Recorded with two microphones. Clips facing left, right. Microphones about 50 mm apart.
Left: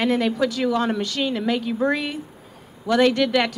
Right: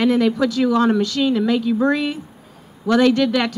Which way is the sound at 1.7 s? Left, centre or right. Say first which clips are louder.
Right 4 dB; centre.